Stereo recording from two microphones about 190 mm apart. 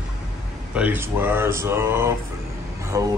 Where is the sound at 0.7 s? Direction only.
10° right (ahead or behind).